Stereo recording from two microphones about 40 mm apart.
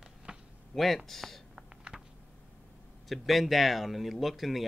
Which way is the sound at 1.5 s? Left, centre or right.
Centre.